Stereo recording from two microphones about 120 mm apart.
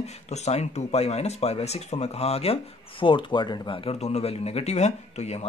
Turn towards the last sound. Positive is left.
turn(degrees=65)  # may be behind; listen again after turning